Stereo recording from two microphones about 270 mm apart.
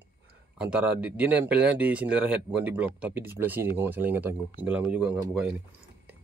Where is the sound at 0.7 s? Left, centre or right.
Centre.